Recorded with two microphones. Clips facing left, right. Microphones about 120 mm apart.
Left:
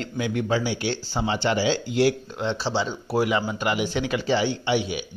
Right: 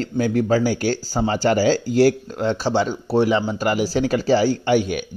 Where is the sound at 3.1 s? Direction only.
30° right (ahead or behind).